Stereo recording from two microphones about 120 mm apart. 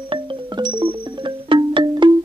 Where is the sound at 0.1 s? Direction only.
45° right (ahead or behind).